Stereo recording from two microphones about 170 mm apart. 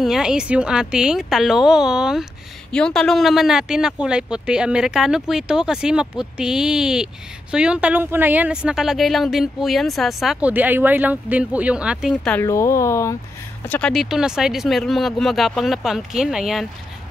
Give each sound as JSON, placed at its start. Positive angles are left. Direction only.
{"t": 0.0, "sound": "speech", "side_deg": -5}
{"t": 12.4, "sound": "speech", "side_deg": 15}
{"t": 13.7, "sound": "speech", "side_deg": 5}